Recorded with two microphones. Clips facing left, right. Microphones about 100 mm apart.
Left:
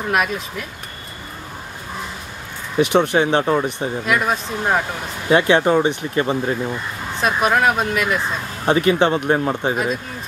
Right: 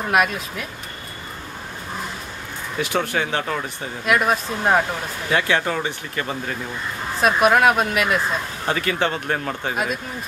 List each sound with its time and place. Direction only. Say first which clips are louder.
0.1 s speech: right 1 dB; centre (ahead or behind)
2.8 s speech: left 7 dB; 20° left (ahead or behind)
4.0 s speech: right 2 dB; centre (ahead or behind)
5.3 s speech: left 7 dB; 20° left (ahead or behind)
7.2 s speech: right 2 dB; 5° right (ahead or behind)
8.6 s speech: left 7 dB; 20° left (ahead or behind)